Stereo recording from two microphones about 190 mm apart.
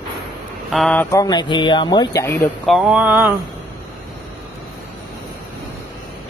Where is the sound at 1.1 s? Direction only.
20° left (ahead or behind).